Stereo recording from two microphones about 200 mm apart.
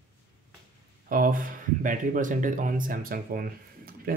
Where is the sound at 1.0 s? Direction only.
45° right (ahead or behind).